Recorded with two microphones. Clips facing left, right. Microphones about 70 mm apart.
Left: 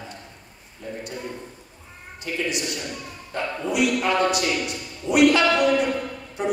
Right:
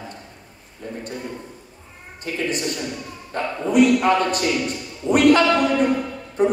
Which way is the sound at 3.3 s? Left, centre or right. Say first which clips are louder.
Right 7 dB; right.